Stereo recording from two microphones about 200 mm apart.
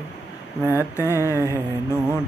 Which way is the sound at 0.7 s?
10° left (ahead or behind).